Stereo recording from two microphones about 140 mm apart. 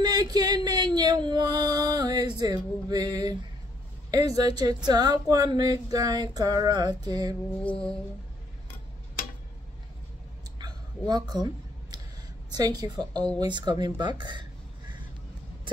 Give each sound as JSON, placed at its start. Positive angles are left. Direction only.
{"t": 0.0, "sound": "music", "side_deg": -30}
{"t": 4.1, "sound": "female singing", "side_deg": -30}
{"t": 10.6, "sound": "a sound", "side_deg": -30}
{"t": 12.4, "sound": "female singing", "side_deg": -30}
{"t": 13.4, "sound": "speech", "side_deg": -30}